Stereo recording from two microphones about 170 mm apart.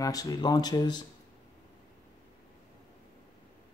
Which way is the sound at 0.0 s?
20° left (ahead or behind).